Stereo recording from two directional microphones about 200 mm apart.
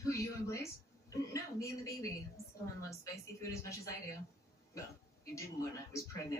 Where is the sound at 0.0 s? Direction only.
15° left (ahead or behind).